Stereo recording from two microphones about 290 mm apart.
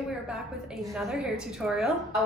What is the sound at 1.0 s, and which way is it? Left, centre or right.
A woman's voice, centre.